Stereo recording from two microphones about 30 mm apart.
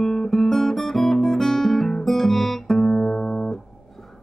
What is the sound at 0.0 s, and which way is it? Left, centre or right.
Guitar, centre.